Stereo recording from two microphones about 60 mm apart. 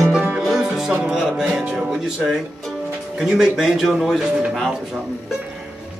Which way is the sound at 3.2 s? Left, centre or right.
Centre.